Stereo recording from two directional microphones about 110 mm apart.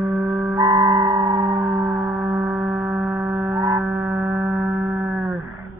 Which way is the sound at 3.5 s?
50° right (ahead or behind).